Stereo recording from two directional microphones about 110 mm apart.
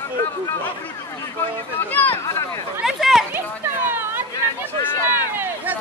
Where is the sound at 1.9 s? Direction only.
20° left (ahead or behind).